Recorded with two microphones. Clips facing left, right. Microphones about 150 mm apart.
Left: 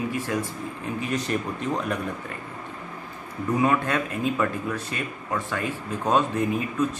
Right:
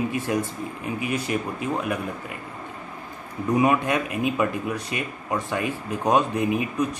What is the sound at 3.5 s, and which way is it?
Speech, 15° right (ahead or behind).